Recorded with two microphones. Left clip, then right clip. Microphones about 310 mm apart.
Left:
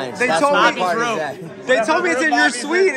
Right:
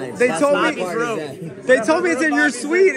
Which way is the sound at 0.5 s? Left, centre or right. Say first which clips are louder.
Left 3 dB; left.